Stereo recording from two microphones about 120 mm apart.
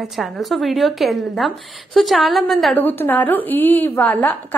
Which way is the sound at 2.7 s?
15° left (ahead or behind).